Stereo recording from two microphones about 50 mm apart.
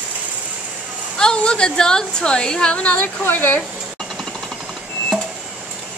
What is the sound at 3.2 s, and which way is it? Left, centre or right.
Speech, left.